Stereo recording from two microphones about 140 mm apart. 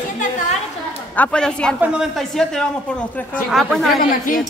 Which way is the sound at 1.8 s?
5° right (ahead or behind).